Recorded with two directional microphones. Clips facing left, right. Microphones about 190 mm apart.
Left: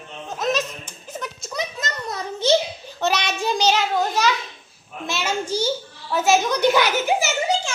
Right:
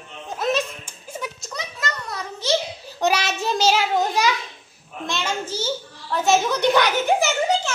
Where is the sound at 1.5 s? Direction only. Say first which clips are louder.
Left 4 dB; 20° left (ahead or behind).